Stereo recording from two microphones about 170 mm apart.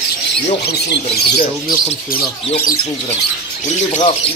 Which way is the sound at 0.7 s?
70° left (ahead or behind).